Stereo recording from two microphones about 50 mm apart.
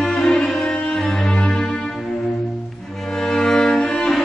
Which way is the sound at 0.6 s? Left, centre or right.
Centre.